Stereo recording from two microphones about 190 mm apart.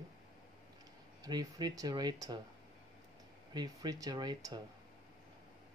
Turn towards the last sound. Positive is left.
turn(degrees=-20)  # may be behind; listen again after turning